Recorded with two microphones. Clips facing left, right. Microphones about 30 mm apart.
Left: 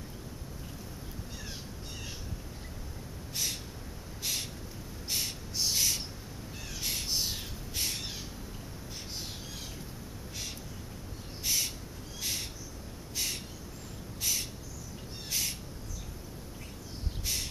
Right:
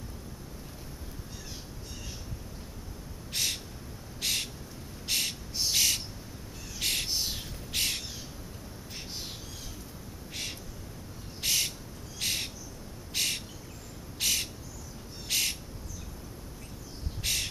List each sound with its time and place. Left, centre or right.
3.3 s a sound: right
5.7 s bird: right
7.7 s crow: right
11.4 s bird: right
17.2 s crow: right